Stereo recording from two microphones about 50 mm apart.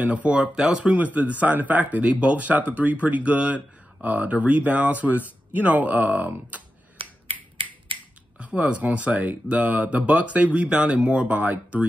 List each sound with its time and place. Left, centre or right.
0.0 s speech: right
0.9 s speech: right
8.4 s speech: right